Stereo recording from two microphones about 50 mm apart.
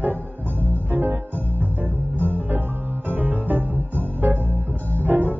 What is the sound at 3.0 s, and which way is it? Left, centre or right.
Music, right.